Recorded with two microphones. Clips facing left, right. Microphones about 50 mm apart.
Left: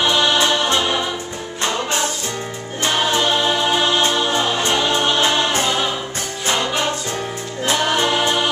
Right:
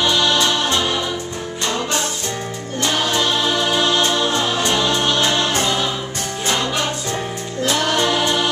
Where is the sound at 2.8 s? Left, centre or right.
Centre.